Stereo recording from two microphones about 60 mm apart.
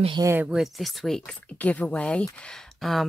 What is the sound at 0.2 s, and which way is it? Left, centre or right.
Speech, right.